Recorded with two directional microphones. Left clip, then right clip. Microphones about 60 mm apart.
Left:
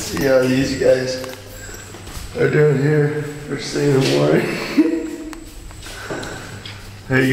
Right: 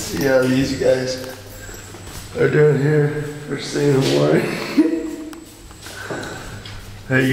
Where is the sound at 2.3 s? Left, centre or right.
Centre.